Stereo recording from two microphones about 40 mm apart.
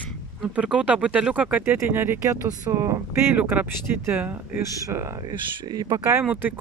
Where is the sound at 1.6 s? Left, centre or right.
Right.